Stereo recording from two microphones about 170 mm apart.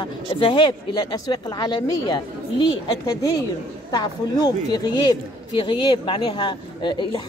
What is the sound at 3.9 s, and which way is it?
A woman's voice, 25° left (ahead or behind).